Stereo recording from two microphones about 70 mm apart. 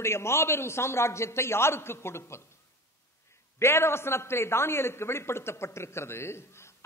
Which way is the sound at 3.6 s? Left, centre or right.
Left.